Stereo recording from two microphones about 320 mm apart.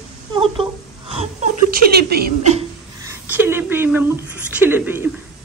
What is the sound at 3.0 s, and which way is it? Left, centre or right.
Speech, centre.